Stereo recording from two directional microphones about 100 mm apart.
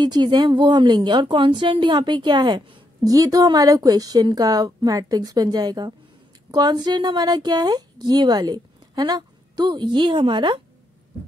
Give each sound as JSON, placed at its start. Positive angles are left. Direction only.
{"t": 0.0, "sound": "a woman's voice", "side_deg": -45}
{"t": 3.0, "sound": "a woman's voice", "side_deg": -35}